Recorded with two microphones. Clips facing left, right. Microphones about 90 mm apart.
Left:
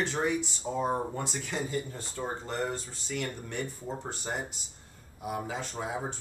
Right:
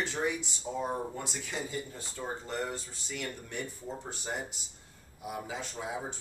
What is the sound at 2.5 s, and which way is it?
Speech, 45° left (ahead or behind).